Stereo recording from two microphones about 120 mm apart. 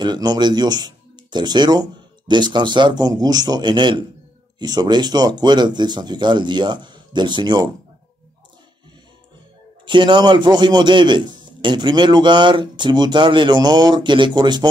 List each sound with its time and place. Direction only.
0.0 s a man's voice: 35° right (ahead or behind)
9.8 s a man's voice: 40° right (ahead or behind)